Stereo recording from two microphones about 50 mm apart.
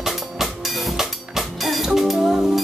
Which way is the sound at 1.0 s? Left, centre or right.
Centre.